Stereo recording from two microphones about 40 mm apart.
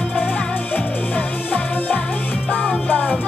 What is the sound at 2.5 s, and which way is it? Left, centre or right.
Music, left.